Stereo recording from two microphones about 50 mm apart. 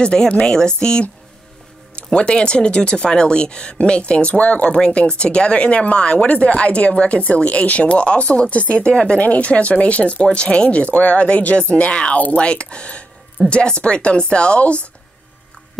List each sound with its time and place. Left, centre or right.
0.0 s speech: centre